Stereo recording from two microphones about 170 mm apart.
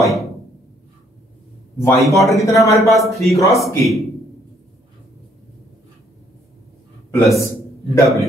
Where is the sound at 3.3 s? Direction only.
20° left (ahead or behind).